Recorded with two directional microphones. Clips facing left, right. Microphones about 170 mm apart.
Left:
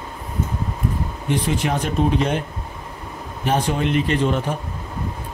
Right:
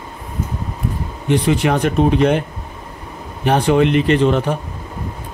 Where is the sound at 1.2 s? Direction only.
70° right (ahead or behind).